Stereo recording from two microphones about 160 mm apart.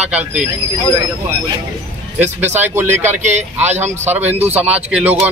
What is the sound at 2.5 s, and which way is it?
Speech, 15° right (ahead or behind).